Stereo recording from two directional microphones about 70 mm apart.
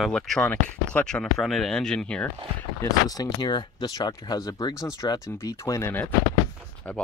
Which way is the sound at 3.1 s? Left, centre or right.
Left.